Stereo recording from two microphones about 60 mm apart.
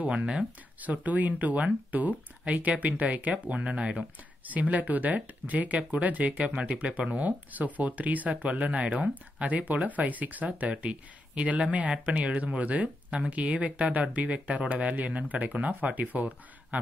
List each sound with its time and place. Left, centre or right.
0.0 s speech: centre
0.7 s speech: right